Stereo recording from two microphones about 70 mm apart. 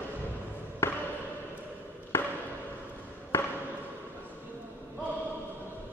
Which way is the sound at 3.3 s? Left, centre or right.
Left.